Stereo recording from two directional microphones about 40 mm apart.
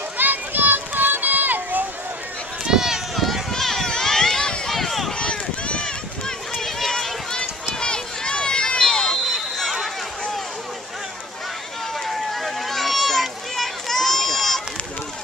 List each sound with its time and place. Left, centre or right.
0.2 s a sound: right
2.6 s run: centre
3.5 s run: centre
3.9 s a sound: centre
5.1 s run: left
6.6 s run: centre
7.8 s run: left
9.1 s a sound: centre
12.1 s run: centre